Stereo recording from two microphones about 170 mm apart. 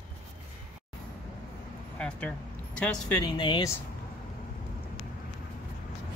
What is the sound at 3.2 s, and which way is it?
Speech, 30° left (ahead or behind).